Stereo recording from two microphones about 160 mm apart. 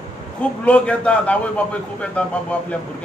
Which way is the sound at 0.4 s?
10° left (ahead or behind).